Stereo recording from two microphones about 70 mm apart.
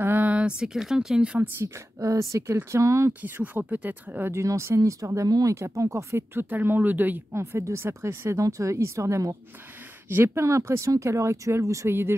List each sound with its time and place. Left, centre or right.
0.0 s speech: right
1.6 s speech: right
3.1 s speech: right
4.3 s speech: right
7.3 s speech: right
8.4 s speech: right